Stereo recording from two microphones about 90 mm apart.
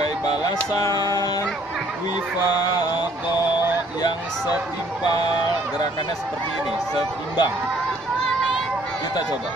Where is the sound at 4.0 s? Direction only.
50° left (ahead or behind).